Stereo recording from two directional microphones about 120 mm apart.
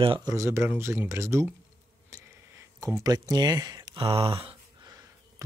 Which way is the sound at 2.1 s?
25° right (ahead or behind).